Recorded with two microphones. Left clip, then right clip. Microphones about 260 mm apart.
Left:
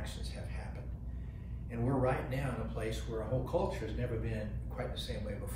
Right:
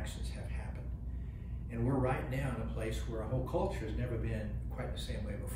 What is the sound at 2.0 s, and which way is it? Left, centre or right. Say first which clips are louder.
Speech: left 2 dB; centre.